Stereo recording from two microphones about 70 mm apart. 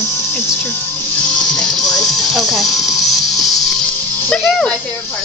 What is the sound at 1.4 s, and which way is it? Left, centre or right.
Music, centre.